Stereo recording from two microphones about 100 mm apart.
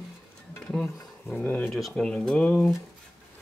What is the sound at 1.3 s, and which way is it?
Speech, 15° left (ahead or behind).